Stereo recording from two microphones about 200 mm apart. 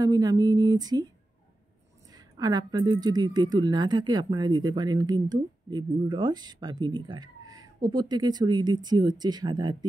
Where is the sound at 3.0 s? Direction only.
20° right (ahead or behind).